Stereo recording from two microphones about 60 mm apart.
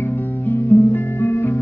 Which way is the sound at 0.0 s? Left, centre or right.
Left.